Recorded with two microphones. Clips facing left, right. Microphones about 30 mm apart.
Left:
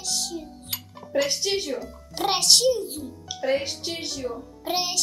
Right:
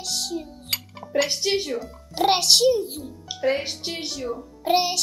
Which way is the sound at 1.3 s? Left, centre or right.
Centre.